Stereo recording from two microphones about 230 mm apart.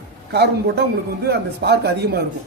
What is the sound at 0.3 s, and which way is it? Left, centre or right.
A man's voice, right.